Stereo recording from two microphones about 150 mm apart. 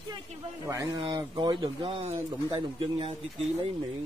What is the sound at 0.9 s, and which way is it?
Speech, 30° right (ahead or behind).